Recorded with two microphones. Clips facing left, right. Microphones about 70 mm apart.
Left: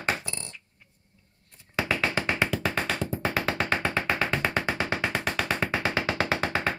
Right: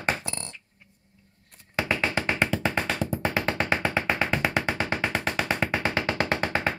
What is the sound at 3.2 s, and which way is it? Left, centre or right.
Music, centre.